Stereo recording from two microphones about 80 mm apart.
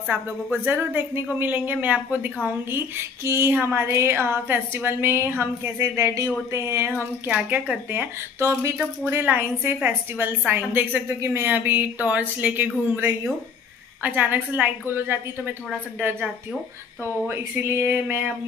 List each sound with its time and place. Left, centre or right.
0.7 s a woman's voice: right
7.2 s speech: centre
8.4 s a woman's voice: right
8.7 s speech: right
11.1 s speech: right
14.0 s speech: right
17.3 s speech: right